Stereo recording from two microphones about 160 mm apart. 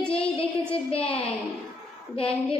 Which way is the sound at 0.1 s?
35° left (ahead or behind).